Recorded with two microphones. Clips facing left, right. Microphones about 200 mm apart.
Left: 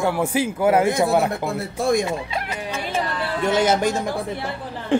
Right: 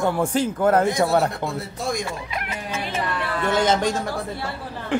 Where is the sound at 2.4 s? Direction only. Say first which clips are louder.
Left 2 dB; 35° left (ahead or behind).